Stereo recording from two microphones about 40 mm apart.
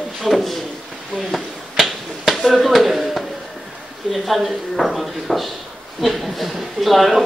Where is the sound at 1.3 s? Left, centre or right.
Centre.